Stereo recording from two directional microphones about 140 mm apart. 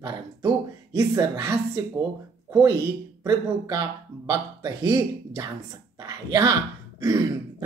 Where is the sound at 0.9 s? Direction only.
20° right (ahead or behind).